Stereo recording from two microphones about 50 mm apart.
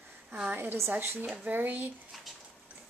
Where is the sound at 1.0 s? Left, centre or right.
Right.